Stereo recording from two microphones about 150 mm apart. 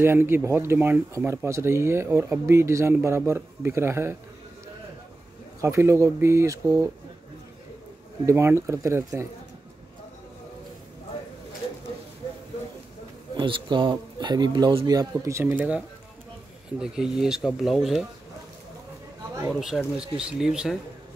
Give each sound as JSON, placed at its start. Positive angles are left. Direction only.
{"t": 0.0, "sound": "speech", "side_deg": -15}
{"t": 5.6, "sound": "speech", "side_deg": -20}
{"t": 8.3, "sound": "speech", "side_deg": -20}
{"t": 13.4, "sound": "speech", "side_deg": -30}
{"t": 14.9, "sound": "speech", "side_deg": -20}
{"t": 16.8, "sound": "speech", "side_deg": -5}
{"t": 19.6, "sound": "speech", "side_deg": -5}